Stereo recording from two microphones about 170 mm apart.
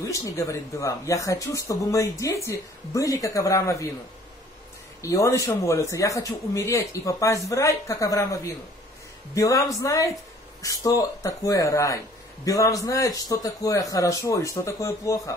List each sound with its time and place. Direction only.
0.0 s speech: 20° left (ahead or behind)
5.0 s speech: 20° left (ahead or behind)